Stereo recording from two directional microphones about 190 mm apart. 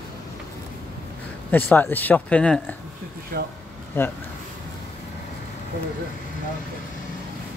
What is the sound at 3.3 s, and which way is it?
Speech, 50° right (ahead or behind).